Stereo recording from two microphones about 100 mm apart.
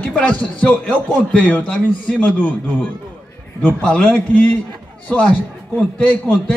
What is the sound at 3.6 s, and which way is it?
Speech, 10° left (ahead or behind).